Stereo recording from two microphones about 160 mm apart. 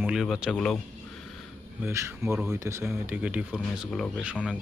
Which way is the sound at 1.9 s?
15° right (ahead or behind).